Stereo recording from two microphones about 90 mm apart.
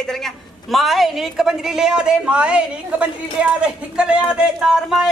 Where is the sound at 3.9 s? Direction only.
10° right (ahead or behind).